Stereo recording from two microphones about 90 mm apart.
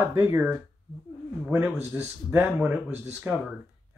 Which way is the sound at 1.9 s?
20° right (ahead or behind).